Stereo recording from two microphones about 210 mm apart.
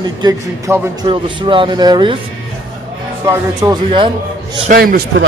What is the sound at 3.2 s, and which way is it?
Speech, 20° right (ahead or behind).